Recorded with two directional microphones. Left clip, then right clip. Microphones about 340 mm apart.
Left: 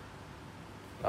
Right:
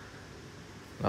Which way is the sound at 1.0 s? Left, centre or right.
Right.